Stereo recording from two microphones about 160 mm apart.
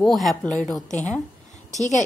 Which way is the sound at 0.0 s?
Centre (ahead or behind).